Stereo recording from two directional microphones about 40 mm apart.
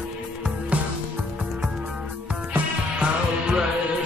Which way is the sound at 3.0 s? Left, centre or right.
Right.